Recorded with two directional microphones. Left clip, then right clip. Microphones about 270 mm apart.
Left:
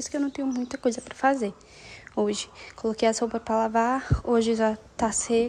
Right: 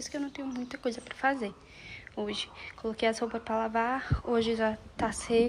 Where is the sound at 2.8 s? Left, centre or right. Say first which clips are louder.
Left 6 dB; centre.